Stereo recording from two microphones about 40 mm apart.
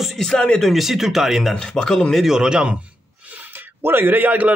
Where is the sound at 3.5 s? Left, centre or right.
Right.